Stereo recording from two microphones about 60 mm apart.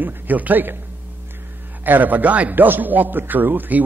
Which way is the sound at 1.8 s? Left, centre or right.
Right.